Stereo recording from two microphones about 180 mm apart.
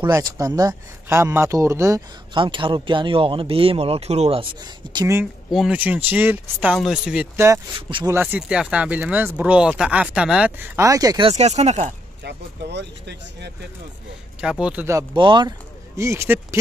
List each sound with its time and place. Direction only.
0.0 s speech: 20° right (ahead or behind)
4.9 s speech: 15° right (ahead or behind)
5.5 s speech: 5° right (ahead or behind)
7.3 s speech: 15° right (ahead or behind)
8.2 s speech: 5° right (ahead or behind); by 11.9 s 40° right (ahead or behind)
12.2 s speech: 70° right (ahead or behind)
14.4 s speech: 5° right (ahead or behind)
15.1 s speech: 25° right (ahead or behind)
16.0 s speech: 15° right (ahead or behind)